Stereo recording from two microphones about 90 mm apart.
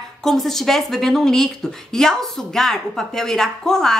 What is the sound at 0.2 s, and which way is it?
Speech, 5° left (ahead or behind).